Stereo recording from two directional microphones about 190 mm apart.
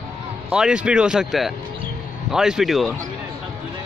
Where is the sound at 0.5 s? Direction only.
5° right (ahead or behind).